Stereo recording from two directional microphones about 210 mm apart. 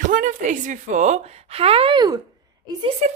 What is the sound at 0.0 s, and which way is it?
A woman's voice, 35° right (ahead or behind).